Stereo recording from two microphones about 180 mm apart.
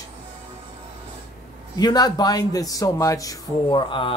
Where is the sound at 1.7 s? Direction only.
20° left (ahead or behind).